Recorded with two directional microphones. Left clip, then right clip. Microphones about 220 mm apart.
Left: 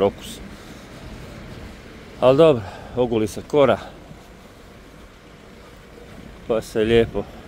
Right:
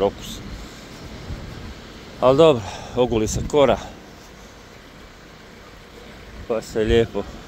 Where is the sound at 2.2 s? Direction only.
20° left (ahead or behind).